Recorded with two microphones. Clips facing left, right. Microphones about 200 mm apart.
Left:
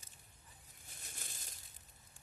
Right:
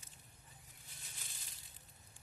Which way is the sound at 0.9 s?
50° left (ahead or behind).